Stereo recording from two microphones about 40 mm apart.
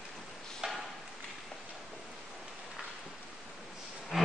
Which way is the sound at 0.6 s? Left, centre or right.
Centre.